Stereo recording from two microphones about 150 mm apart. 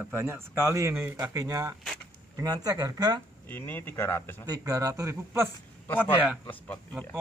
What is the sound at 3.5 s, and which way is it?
Speech, 15° left (ahead or behind).